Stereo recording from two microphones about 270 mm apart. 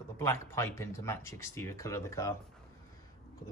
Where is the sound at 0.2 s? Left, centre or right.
Centre.